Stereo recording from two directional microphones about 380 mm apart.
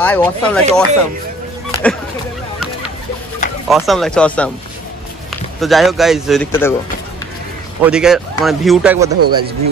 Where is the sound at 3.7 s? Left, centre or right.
Centre.